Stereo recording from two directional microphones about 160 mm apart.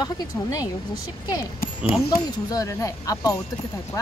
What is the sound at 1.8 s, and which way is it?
Speech, 5° right (ahead or behind).